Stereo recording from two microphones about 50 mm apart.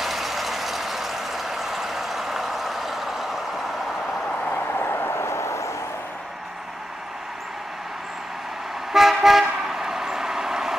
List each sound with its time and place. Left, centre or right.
0.0 s vehicle: centre
4.5 s vehicle: left
8.9 s toot: centre